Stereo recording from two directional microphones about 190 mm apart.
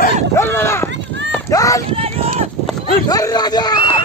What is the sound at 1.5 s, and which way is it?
Run, 15° left (ahead or behind).